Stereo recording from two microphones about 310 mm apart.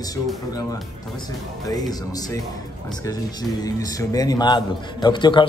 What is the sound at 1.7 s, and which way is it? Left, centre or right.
Speech, centre.